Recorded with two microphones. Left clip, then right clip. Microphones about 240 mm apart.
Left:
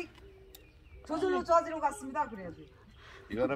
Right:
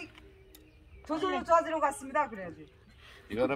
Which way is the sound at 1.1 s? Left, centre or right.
Centre.